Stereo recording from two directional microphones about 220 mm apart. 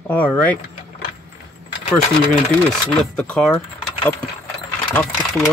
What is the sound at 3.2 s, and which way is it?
Speech, 5° left (ahead or behind).